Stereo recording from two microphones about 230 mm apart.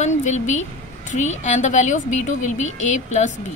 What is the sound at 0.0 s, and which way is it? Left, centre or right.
A woman's voice, left.